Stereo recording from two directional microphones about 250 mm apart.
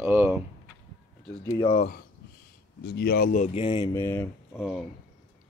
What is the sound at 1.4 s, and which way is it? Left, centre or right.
Speech, centre.